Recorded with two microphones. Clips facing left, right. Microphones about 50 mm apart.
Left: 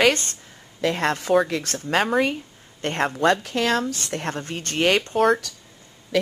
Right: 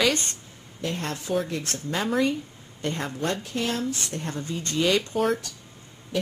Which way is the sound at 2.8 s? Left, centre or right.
Left.